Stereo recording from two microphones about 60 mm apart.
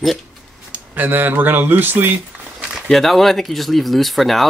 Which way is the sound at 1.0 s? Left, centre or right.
Right.